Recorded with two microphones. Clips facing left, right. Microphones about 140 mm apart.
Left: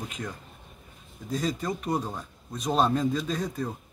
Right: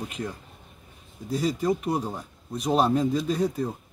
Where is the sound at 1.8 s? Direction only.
10° right (ahead or behind).